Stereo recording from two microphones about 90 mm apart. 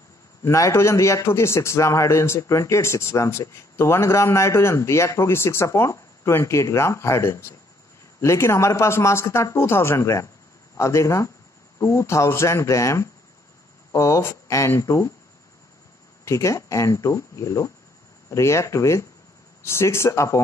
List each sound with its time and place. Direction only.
0.4 s a man's voice: 35° left (ahead or behind)
16.3 s a man's voice: 35° left (ahead or behind)